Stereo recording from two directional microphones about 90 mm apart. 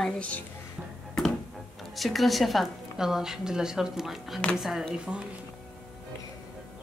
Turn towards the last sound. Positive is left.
turn(degrees=-10)  # may be behind; listen again after turning